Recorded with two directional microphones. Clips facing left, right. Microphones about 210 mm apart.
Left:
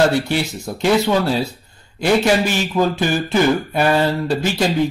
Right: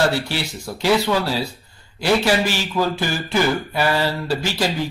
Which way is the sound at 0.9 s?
20° left (ahead or behind).